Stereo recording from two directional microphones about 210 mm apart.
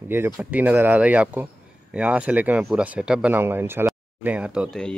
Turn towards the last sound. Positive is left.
turn(degrees=0)  # may be behind; listen again after turning